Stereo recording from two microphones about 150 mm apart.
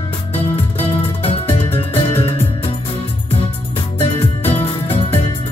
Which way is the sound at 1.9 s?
40° left (ahead or behind).